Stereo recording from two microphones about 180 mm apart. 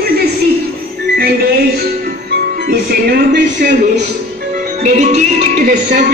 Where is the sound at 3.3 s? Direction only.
45° right (ahead or behind).